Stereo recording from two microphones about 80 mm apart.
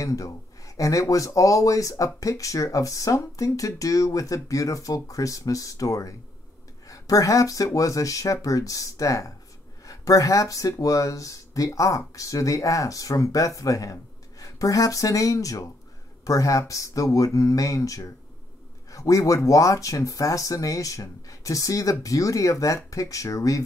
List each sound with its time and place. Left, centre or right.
0.0 s speech: left